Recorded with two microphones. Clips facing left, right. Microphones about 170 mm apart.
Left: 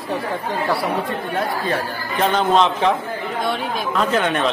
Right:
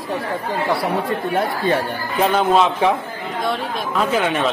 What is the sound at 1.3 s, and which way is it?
Speech, 25° right (ahead or behind).